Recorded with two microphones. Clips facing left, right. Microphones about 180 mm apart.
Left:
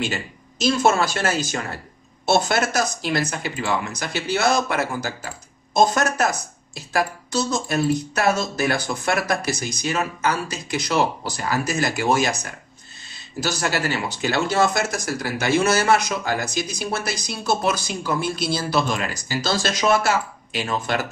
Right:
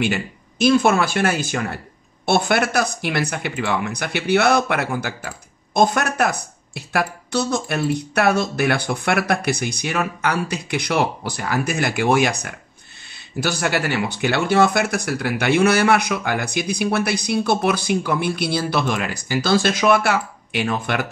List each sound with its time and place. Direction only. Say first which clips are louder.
0.0 s speech: right 5 dB; 60° right (ahead or behind)